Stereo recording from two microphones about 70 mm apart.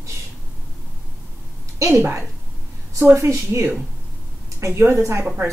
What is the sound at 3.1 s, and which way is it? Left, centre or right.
A woman's voice, right.